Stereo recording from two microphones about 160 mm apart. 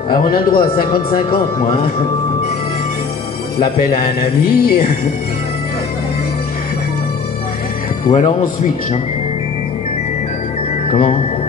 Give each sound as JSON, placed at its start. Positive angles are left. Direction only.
{"t": 0.1, "sound": "speech", "side_deg": 65}
{"t": 3.6, "sound": "speech", "side_deg": 65}
{"t": 8.1, "sound": "speech", "side_deg": 50}
{"t": 10.9, "sound": "speech", "side_deg": 35}